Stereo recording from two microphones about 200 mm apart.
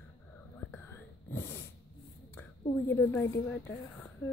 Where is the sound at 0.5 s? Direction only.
10° left (ahead or behind).